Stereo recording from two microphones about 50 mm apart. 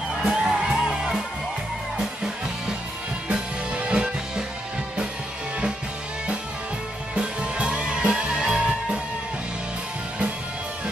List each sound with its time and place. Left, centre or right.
0.2 s music: centre
3.3 s music: right
7.2 s music: right